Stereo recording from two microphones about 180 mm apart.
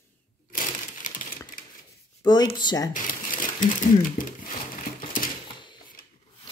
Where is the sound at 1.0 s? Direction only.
50° left (ahead or behind).